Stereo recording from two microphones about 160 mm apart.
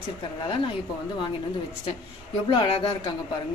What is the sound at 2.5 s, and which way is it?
Speech, 35° left (ahead or behind).